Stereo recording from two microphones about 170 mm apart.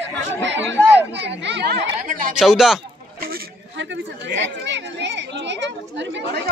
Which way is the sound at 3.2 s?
75° right (ahead or behind).